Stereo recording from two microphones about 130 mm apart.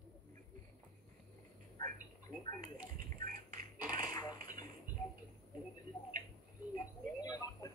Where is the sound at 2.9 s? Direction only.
90° right.